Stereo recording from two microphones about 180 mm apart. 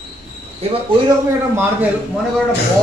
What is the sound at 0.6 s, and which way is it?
Speech, 35° right (ahead or behind).